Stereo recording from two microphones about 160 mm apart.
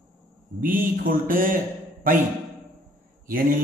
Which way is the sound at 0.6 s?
60° right (ahead or behind).